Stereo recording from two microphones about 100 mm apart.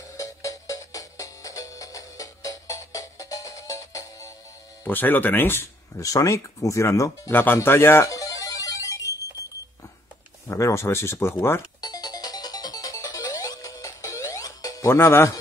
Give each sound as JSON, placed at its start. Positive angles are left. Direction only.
{"t": 0.2, "sound": "music", "side_deg": 35}
{"t": 4.8, "sound": "speech", "side_deg": 20}
{"t": 8.1, "sound": "music", "side_deg": 35}
{"t": 10.5, "sound": "speech", "side_deg": 30}
{"t": 11.8, "sound": "music", "side_deg": 40}
{"t": 15.0, "sound": "speech", "side_deg": 25}